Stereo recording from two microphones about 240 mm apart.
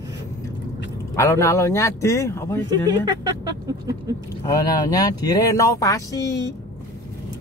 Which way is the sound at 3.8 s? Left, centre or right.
Centre.